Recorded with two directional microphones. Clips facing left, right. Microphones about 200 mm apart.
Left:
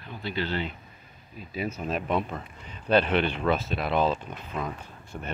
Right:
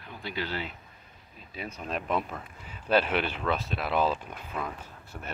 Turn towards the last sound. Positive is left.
turn(degrees=5)  # may be behind; listen again after turning